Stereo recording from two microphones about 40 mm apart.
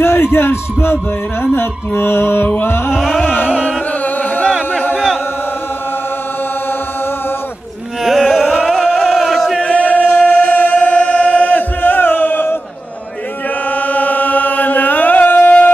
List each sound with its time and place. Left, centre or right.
0.0 s speech: left
1.6 s music: left
2.4 s music: left
4.9 s chant: centre
8.0 s a sound: centre
9.6 s singing: left
13.7 s chant: left